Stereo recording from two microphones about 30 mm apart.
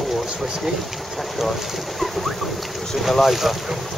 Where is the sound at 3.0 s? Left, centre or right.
Centre.